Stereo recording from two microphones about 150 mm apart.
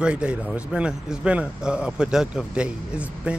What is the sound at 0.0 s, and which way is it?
A man's voice, 5° right (ahead or behind).